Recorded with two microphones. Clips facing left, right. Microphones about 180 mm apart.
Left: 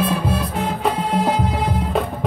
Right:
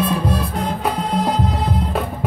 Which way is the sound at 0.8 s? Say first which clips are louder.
Left 2 dB; 5° left (ahead or behind).